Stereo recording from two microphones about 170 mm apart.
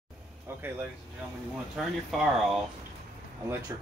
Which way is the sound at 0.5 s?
15° right (ahead or behind).